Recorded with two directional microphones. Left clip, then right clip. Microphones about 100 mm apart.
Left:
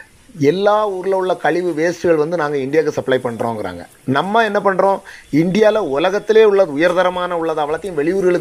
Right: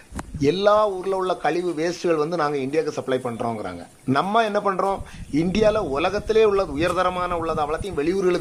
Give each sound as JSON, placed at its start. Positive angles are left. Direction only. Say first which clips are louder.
{"t": 0.4, "sound": "speech", "louder": "left 4 dB", "side_deg": 15}
{"t": 2.7, "sound": "speech", "louder": "left 8 dB", "side_deg": 35}